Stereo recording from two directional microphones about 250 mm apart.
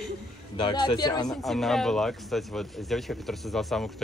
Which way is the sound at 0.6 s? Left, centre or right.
Centre.